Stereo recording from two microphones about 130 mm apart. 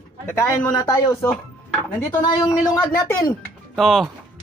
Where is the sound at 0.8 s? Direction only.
30° left (ahead or behind).